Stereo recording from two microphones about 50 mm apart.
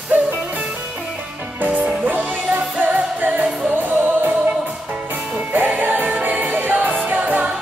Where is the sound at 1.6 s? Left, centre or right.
Right.